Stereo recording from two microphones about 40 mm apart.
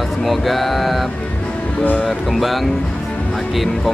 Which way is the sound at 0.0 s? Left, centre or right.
Centre.